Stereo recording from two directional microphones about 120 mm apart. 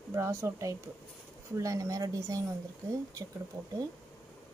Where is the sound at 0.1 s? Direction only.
20° right (ahead or behind).